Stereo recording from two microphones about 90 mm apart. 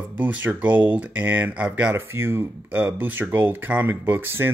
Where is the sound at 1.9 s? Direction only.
30° right (ahead or behind).